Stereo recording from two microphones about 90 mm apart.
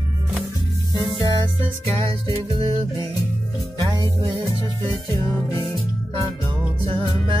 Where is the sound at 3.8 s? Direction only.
40° right (ahead or behind).